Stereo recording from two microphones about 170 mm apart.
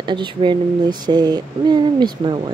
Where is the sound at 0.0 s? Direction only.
25° right (ahead or behind).